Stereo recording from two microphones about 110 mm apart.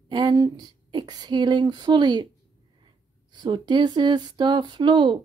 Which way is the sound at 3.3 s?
45° right (ahead or behind).